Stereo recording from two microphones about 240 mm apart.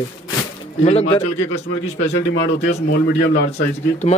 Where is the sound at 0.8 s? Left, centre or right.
Left.